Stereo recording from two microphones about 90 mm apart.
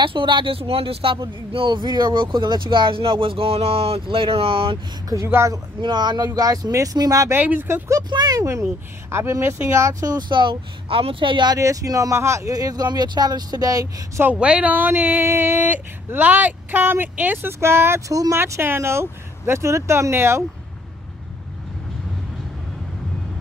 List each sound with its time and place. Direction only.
0.0 s speech: 65° right (ahead or behind); by 1.2 s 85° right
1.5 s speech: 70° right (ahead or behind); by 4.7 s 90° right
5.1 s speech: 30° right (ahead or behind)
5.8 s speech: 55° right (ahead or behind); by 7.3 s 40° right (ahead or behind)
7.3 s speech: 20° right (ahead or behind)
8.1 s speech: 55° right (ahead or behind)
8.4 s speech: 35° right (ahead or behind); by 11.5 s 65° right (ahead or behind)
11.5 s speech: 40° right (ahead or behind)
14.4 s speech: 15° right (ahead or behind); by 18.4 s 40° right (ahead or behind)
18.4 s speech: 25° right (ahead or behind)